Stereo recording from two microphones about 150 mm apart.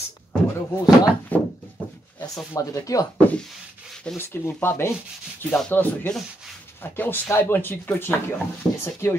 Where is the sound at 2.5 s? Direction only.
20° left (ahead or behind).